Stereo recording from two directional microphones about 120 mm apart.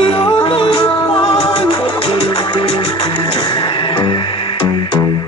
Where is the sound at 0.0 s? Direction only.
45° left (ahead or behind).